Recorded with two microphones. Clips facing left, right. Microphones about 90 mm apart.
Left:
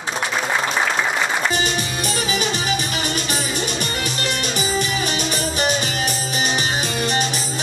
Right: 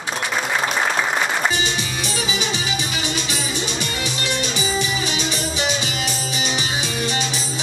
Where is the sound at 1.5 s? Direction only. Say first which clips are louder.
Left 1 dB; 45° left (ahead or behind).